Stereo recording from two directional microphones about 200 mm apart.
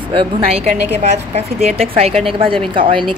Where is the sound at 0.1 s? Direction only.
25° right (ahead or behind).